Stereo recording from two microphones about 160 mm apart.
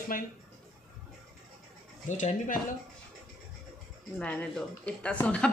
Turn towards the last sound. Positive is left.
turn(degrees=10)  # may be behind; listen again after turning